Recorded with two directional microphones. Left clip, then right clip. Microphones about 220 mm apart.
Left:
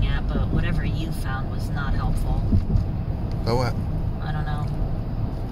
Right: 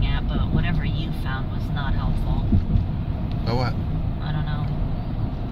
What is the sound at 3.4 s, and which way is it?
Vehicle, 20° left (ahead or behind).